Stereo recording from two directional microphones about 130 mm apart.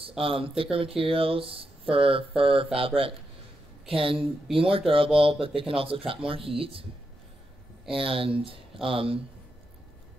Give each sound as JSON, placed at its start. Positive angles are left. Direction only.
{"t": 0.2, "sound": "speech", "side_deg": -45}
{"t": 7.9, "sound": "speech", "side_deg": -45}